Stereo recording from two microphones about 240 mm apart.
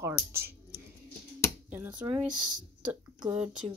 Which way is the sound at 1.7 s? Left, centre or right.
Centre.